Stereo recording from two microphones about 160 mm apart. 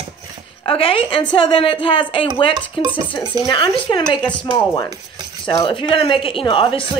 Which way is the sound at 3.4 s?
30° left (ahead or behind).